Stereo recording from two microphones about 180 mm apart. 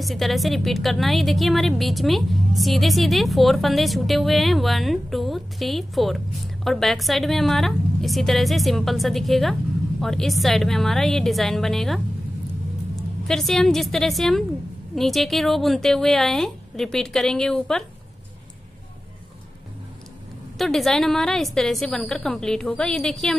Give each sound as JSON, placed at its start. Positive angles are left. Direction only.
{"t": 0.0, "sound": "a woman's voice", "side_deg": 0}
{"t": 13.3, "sound": "a woman's voice", "side_deg": 0}
{"t": 20.5, "sound": "a woman's voice", "side_deg": 0}